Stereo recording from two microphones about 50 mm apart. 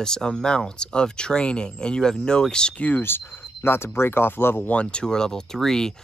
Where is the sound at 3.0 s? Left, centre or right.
Left.